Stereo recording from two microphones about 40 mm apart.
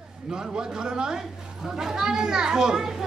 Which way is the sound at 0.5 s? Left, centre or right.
Centre.